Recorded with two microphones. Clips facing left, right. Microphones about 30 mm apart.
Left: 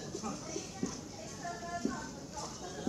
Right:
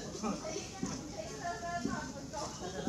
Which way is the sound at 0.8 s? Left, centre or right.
Centre.